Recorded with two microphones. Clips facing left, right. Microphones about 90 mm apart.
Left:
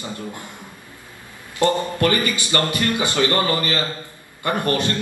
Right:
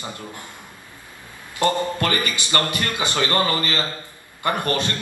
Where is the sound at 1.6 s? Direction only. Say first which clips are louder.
Left 2 dB; 20° left (ahead or behind).